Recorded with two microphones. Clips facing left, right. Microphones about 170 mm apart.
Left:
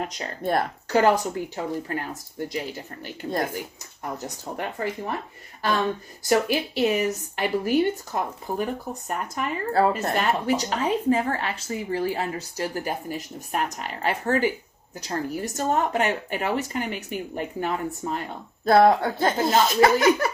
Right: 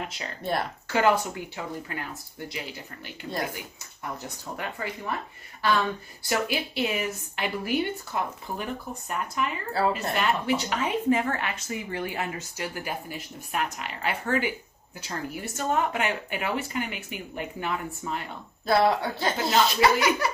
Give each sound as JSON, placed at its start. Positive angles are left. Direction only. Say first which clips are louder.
{"t": 0.0, "sound": "speech", "louder": "left 5 dB", "side_deg": 40}
{"t": 6.2, "sound": "speech", "louder": "left 6 dB", "side_deg": 40}
{"t": 18.7, "sound": "speech", "louder": "left 5 dB", "side_deg": 50}